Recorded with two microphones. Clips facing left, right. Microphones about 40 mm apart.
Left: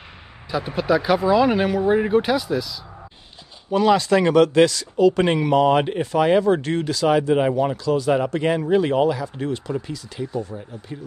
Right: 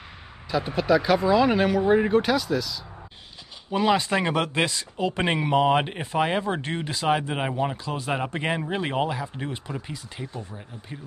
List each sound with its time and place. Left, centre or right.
0.5 s speech: centre
3.7 s speech: centre
7.4 s speech: centre
7.7 s speech: right